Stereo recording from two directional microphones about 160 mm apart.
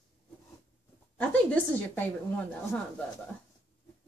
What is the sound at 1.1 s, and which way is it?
Speech, 10° left (ahead or behind).